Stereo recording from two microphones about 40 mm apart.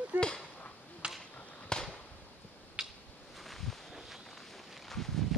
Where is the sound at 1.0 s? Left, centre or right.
Right.